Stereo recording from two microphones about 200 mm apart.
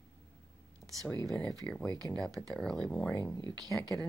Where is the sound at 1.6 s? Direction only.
5° left (ahead or behind).